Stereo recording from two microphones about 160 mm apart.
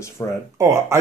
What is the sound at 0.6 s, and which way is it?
Speech, 20° right (ahead or behind).